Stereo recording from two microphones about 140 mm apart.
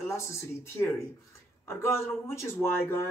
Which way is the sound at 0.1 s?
20° left (ahead or behind).